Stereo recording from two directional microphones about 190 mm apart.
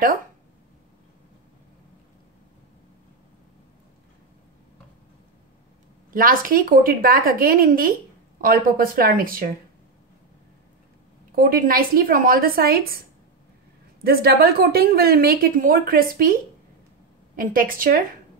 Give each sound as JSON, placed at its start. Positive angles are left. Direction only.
{"t": 6.1, "sound": "a woman's voice", "side_deg": -45}
{"t": 11.3, "sound": "a woman's voice", "side_deg": -50}
{"t": 14.0, "sound": "a woman's voice", "side_deg": -55}
{"t": 17.4, "sound": "a woman's voice", "side_deg": -45}